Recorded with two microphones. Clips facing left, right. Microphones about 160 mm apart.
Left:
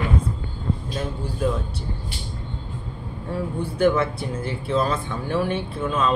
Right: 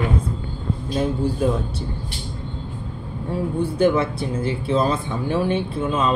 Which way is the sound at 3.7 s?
25° right (ahead or behind).